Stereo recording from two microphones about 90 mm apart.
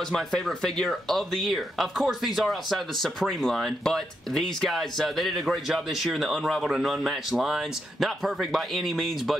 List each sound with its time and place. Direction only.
0.1 s speech: 5° left (ahead or behind)